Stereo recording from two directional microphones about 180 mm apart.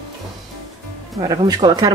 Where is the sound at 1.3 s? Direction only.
20° right (ahead or behind).